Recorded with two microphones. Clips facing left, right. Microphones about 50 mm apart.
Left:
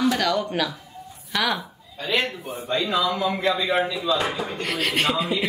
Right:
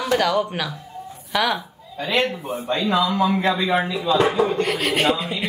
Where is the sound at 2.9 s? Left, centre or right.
Right.